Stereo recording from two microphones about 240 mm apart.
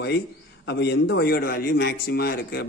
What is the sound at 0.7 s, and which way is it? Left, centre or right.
Speech, left.